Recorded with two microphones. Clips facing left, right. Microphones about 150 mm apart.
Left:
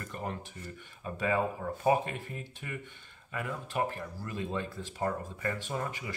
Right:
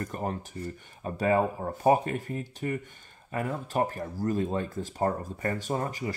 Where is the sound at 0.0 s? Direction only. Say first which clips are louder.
Right 6 dB; 40° right (ahead or behind).